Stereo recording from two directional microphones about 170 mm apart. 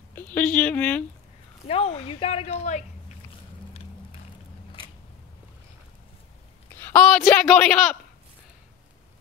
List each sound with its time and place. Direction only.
0.1 s speech: 10° left (ahead or behind)
1.7 s speech: 35° left (ahead or behind)
6.7 s a woman's voice: 10° left (ahead or behind)